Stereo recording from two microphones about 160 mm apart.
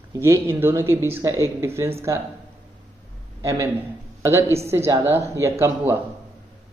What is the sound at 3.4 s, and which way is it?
A man's voice, 20° right (ahead or behind).